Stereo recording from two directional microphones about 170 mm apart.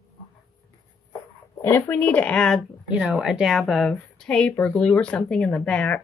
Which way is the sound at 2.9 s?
5° right (ahead or behind).